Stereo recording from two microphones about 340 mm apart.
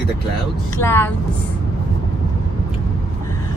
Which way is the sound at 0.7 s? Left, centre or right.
Centre.